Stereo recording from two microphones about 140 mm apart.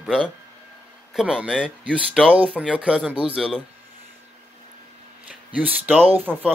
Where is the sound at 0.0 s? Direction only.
Centre (ahead or behind).